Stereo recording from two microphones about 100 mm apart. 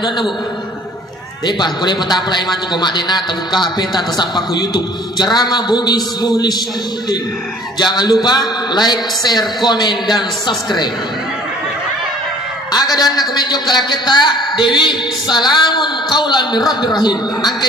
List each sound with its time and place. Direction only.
1.4 s a man's voice: 45° left (ahead or behind)
7.8 s a man's voice: 45° left (ahead or behind)
12.7 s a man's voice: 40° left (ahead or behind)